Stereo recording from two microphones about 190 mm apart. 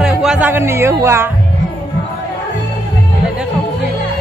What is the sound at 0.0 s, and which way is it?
Speech, 5° right (ahead or behind).